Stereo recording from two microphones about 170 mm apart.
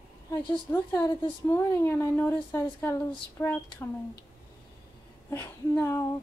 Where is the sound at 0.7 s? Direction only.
15° left (ahead or behind).